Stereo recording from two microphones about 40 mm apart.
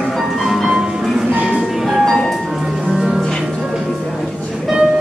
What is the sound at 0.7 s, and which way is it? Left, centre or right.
Music, centre.